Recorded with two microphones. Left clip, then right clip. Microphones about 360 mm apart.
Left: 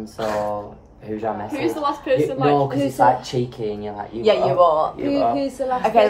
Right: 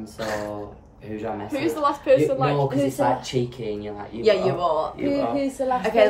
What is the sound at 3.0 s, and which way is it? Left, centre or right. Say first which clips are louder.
Speech: left 10 dB; centre.